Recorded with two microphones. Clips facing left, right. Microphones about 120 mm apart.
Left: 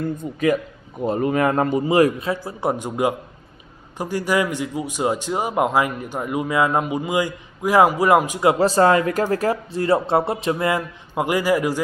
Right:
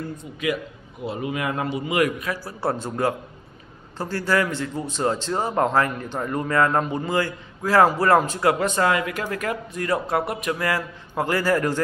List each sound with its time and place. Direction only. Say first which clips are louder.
0.2 s a man's voice: left 6 dB; 40° left (ahead or behind); by 8.5 s 15° left (ahead or behind)
8.5 s speech: left 6 dB; 35° left (ahead or behind); by 11.8 s 10° left (ahead or behind)